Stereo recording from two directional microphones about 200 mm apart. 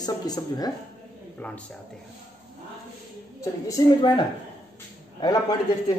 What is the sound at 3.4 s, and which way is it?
Speech, 20° left (ahead or behind).